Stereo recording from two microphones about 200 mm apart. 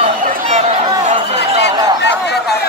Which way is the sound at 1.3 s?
60° left (ahead or behind).